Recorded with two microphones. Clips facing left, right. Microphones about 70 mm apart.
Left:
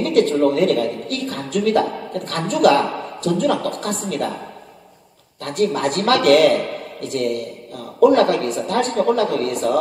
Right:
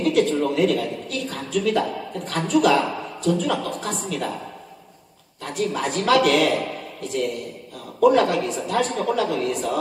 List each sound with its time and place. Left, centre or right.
0.0 s a woman's voice: left
5.4 s a woman's voice: left